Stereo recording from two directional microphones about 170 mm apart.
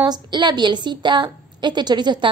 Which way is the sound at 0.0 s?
25° right (ahead or behind).